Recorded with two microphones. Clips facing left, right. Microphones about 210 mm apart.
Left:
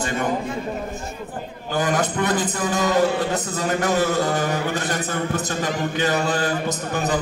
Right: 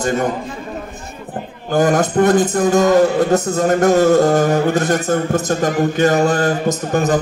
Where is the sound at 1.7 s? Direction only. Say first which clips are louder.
Right 8 dB; 45° right (ahead or behind).